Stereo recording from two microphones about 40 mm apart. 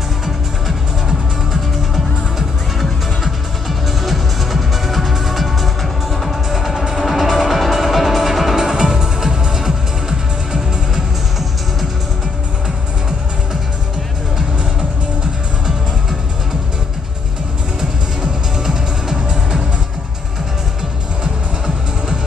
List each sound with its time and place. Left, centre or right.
2.3 s music: centre
17.7 s music: centre